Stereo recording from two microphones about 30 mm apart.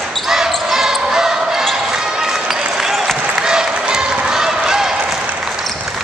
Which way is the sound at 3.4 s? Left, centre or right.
Right.